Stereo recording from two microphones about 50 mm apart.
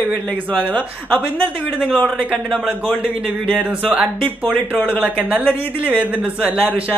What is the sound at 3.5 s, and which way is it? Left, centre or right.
Speech, right.